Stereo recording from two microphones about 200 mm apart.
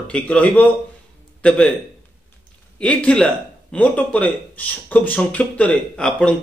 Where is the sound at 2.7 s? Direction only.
5° left (ahead or behind).